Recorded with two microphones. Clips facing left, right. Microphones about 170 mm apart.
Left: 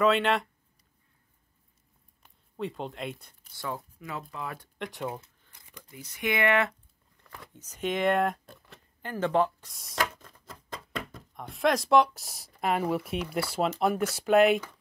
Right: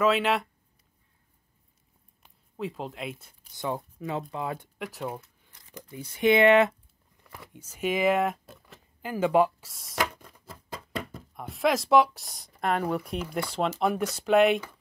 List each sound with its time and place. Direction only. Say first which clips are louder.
0.0 s speech: even; centre (ahead or behind)
2.2 s a sound: even; centre (ahead or behind)
3.5 s speech: right 4 dB; 20° right (ahead or behind)
4.7 s speech: even; 5° right (ahead or behind)
5.7 s speech: right 6 dB; 30° right (ahead or behind)
7.2 s speech: right 1 dB; 5° right (ahead or behind)
10.1 s speech: right 1 dB; 10° right (ahead or behind)